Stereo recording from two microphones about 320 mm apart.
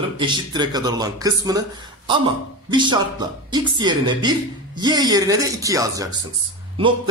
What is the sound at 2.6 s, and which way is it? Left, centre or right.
Speech, centre.